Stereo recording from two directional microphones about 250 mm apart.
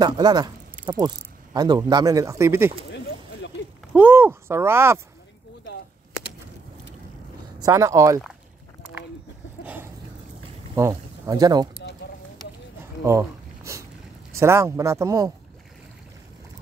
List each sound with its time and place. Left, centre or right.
0.0 s speech: centre
2.9 s a sound: left
3.9 s speech: centre
7.6 s speech: centre
10.8 s speech: centre
13.0 s a sound: centre
14.3 s speech: centre